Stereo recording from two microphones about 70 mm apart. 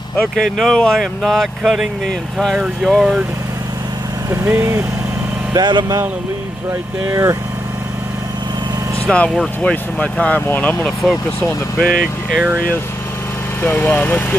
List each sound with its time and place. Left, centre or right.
0.4 s speech: centre
4.5 s speech: right
5.5 s speech: right
7.1 s speech: right
9.1 s speech: centre
11.8 s speech: centre
13.7 s speech: centre